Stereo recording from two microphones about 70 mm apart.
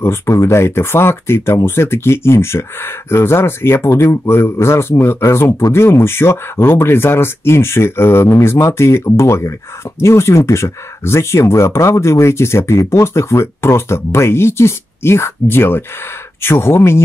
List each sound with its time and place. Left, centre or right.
0.3 s speech: left